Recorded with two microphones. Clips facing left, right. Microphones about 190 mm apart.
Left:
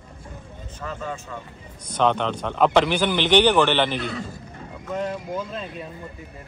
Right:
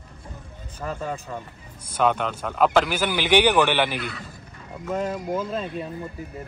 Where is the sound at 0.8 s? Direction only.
35° right (ahead or behind).